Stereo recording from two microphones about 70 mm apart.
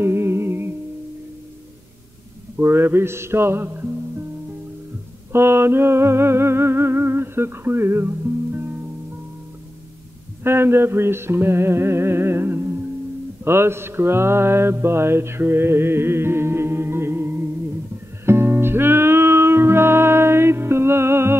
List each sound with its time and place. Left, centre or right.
0.0 s music: right
2.5 s music: right
5.3 s music: right
10.4 s music: right
13.4 s mantra: right
18.2 s music: right